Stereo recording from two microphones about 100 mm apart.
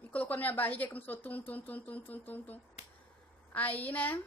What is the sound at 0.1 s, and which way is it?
Speech, 15° left (ahead or behind).